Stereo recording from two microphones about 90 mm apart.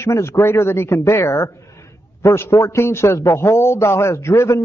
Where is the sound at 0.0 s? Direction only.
30° left (ahead or behind).